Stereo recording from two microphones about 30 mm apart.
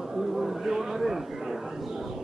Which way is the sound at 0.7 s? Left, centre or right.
Centre.